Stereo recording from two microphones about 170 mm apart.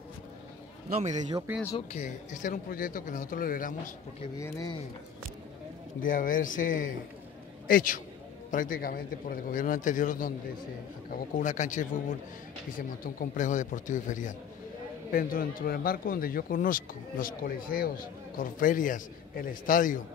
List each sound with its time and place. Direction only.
1.9 s speech: 50° left (ahead or behind)
4.4 s speech: 20° left (ahead or behind)
5.9 s speech: 55° left (ahead or behind)